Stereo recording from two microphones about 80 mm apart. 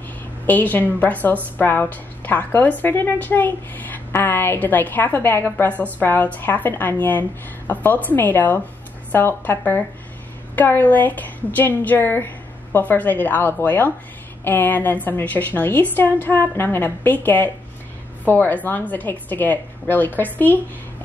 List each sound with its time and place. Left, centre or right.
0.5 s a woman's voice: left